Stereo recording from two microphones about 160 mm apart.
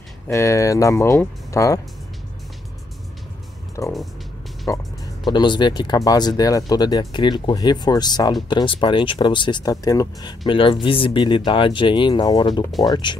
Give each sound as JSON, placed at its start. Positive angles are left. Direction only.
{"t": 0.3, "sound": "speech", "side_deg": 20}
{"t": 3.8, "sound": "speech", "side_deg": 20}